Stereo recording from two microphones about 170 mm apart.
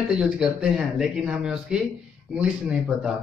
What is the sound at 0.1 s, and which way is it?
Speech, 5° right (ahead or behind).